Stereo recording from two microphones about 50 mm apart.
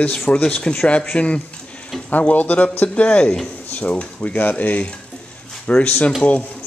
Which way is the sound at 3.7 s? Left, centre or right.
Left.